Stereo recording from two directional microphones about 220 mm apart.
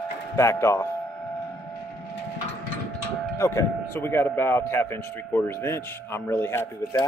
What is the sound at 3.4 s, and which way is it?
Speech, 15° left (ahead or behind).